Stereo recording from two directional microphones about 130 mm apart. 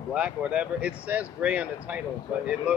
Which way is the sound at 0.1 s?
10° right (ahead or behind).